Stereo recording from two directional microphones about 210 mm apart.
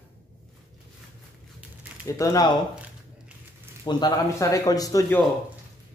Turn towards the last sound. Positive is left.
turn(degrees=15)  # may be behind; listen again after turning